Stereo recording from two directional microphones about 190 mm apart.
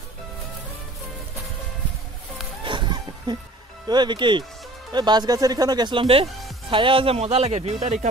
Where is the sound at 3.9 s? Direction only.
25° right (ahead or behind).